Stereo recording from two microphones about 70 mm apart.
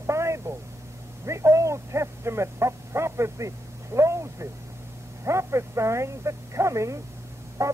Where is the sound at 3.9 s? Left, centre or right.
Right.